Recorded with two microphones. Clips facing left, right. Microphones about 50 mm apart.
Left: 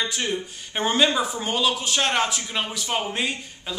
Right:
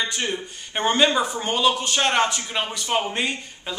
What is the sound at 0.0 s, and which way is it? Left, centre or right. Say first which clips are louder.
A man's voice: even; centre.